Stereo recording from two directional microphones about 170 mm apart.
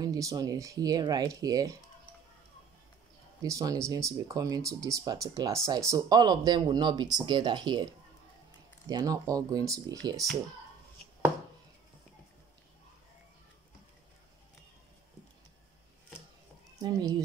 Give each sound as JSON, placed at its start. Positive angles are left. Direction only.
{"t": 0.0, "sound": "speech", "side_deg": -20}
{"t": 3.4, "sound": "speech", "side_deg": -20}
{"t": 16.7, "sound": "speech", "side_deg": -20}